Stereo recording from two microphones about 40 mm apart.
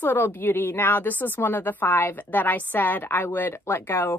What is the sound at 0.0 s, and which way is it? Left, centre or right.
Speech, left.